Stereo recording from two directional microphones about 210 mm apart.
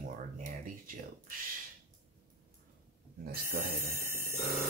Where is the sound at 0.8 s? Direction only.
40° right (ahead or behind).